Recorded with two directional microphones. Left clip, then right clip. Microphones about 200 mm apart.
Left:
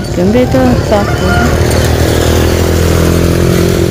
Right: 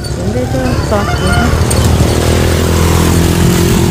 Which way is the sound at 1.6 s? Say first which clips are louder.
Left 3 dB; 50° left (ahead or behind).